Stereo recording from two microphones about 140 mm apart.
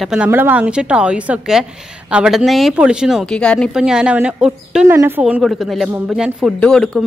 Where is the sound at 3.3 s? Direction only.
5° left (ahead or behind).